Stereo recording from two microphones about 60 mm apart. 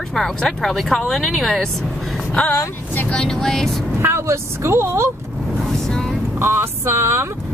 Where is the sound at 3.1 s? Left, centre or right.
Centre.